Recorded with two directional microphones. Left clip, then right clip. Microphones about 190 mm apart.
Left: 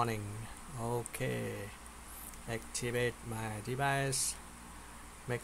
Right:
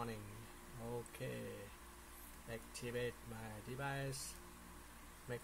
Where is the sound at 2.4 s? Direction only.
30° left (ahead or behind).